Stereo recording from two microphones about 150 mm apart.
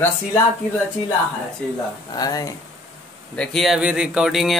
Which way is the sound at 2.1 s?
25° left (ahead or behind).